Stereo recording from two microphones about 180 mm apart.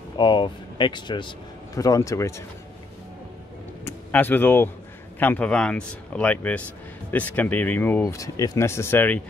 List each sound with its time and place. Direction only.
0.2 s speech: 25° left (ahead or behind)
3.8 s speech: 10° left (ahead or behind)